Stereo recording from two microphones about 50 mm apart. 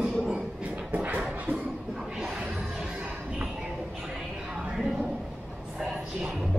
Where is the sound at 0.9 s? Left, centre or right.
Right.